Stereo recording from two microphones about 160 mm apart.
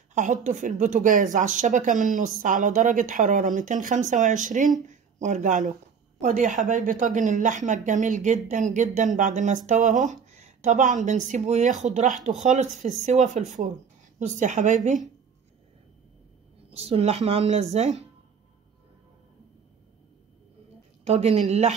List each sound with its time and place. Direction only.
0.1 s a woman's voice: 50° right (ahead or behind)
16.7 s a woman's voice: 40° right (ahead or behind)
21.0 s a woman's voice: 40° right (ahead or behind)